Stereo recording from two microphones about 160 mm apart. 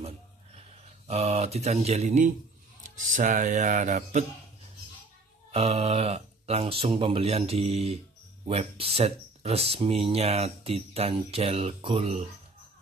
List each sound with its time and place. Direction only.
0.6 s speech: 40° right (ahead or behind)
5.5 s speech: 40° right (ahead or behind)